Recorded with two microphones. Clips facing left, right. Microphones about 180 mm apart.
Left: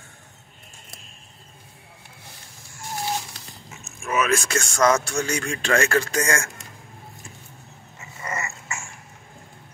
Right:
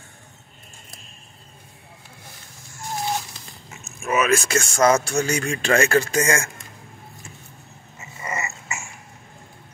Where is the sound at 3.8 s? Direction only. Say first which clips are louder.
Right 2 dB; 5° right (ahead or behind).